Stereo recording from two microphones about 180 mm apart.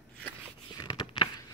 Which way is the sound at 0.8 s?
20° left (ahead or behind).